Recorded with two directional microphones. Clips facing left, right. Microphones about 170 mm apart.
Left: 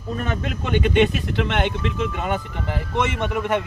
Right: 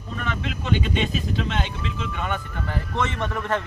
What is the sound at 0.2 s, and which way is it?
Speech, 45° left (ahead or behind).